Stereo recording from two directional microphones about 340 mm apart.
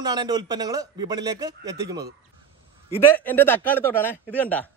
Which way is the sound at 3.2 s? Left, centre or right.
Centre.